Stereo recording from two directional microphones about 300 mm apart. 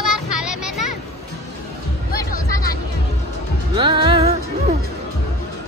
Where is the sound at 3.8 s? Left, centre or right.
Centre.